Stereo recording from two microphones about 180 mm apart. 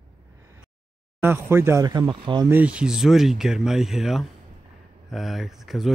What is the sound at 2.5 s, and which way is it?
Speech, 5° right (ahead or behind).